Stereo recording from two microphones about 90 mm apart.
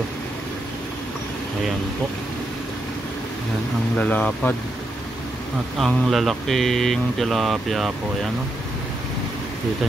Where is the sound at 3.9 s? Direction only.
15° left (ahead or behind).